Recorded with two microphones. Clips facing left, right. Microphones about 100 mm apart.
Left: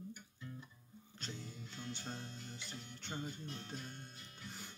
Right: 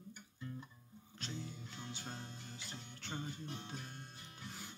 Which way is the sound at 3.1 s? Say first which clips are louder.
Even; 20° right (ahead or behind).